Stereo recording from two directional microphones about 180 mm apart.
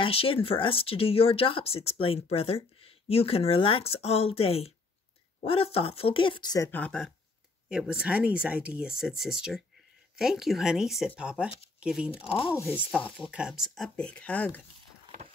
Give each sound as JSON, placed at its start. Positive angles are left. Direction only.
{"t": 0.0, "sound": "speech", "side_deg": 30}
{"t": 6.7, "sound": "speech", "side_deg": 5}
{"t": 7.7, "sound": "speech", "side_deg": -5}
{"t": 12.3, "sound": "speech", "side_deg": 30}
{"t": 12.9, "sound": "speech", "side_deg": 10}
{"t": 13.3, "sound": "speech", "side_deg": -5}